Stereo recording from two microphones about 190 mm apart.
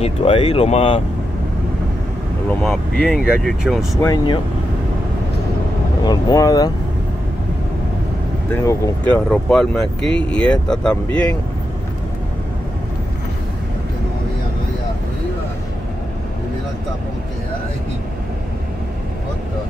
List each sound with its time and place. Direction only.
0.0 s speech: 30° left (ahead or behind)
2.6 s speech: 5° left (ahead or behind)
4.0 s speech: 20° left (ahead or behind)
6.0 s speech: 20° left (ahead or behind)
8.5 s speech: 15° left (ahead or behind)